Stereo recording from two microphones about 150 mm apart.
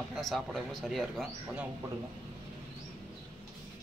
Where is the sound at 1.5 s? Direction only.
10° right (ahead or behind).